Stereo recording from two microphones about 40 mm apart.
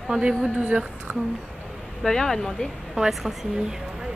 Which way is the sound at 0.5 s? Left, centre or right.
Right.